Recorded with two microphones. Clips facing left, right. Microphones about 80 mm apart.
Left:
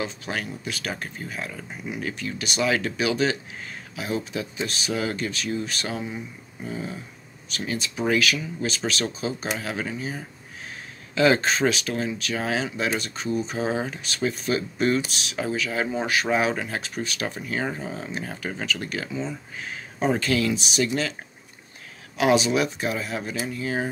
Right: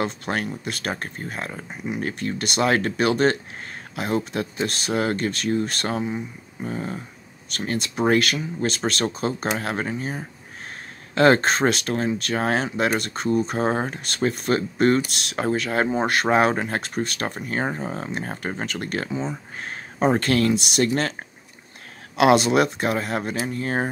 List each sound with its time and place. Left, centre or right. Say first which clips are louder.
0.0 s speech: right 4 dB; right
19.6 s a sound: right 4 dB; right
20.2 s speech: right 3 dB; right
22.1 s speech: right 4 dB; right